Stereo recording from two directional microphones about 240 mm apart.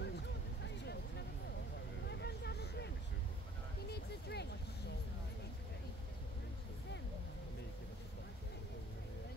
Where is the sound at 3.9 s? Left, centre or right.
Left.